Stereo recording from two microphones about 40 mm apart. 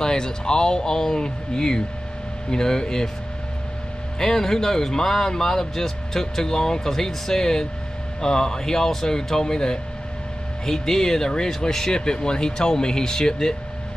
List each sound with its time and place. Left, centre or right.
0.0 s speech: centre
4.2 s speech: centre